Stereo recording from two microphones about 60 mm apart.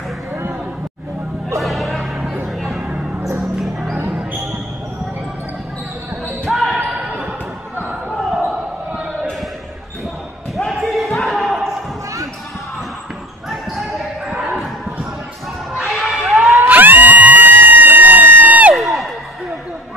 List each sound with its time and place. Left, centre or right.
1.6 s a sound: centre
3.5 s music: centre
6.5 s basketball bounce: centre
10.7 s basketball bounce: centre
13.5 s basketball bounce: centre
15.9 s crowd: centre
16.3 s a sound: centre
16.6 s crowd: right
18.8 s a sound: centre